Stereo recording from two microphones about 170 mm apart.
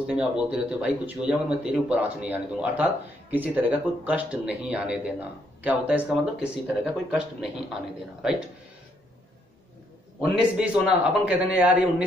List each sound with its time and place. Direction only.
0.0 s speech: 5° right (ahead or behind)
10.2 s speech: 5° right (ahead or behind)